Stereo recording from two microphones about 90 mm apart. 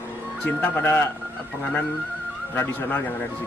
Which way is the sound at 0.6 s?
25° left (ahead or behind).